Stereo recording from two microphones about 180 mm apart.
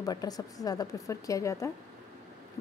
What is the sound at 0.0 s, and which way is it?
A woman's voice, 20° left (ahead or behind).